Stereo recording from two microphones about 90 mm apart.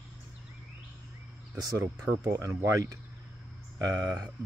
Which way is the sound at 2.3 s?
35° right (ahead or behind).